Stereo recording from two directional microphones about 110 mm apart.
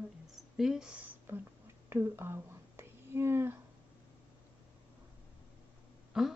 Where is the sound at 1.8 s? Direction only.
20° right (ahead or behind).